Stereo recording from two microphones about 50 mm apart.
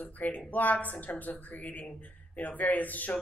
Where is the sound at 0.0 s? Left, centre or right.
Left.